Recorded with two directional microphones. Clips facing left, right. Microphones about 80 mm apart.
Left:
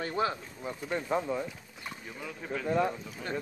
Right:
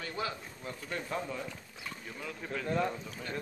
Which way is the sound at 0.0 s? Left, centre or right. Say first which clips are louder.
Left 6 dB; left.